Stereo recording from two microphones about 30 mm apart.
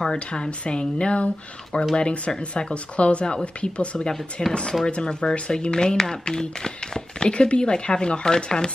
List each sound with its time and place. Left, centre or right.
0.0 s speech: left
4.4 s speech: left
7.2 s speech: left